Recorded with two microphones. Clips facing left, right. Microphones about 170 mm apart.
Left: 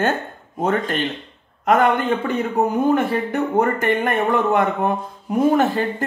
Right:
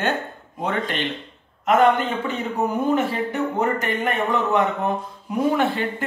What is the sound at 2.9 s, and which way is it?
A man's voice, 55° left (ahead or behind).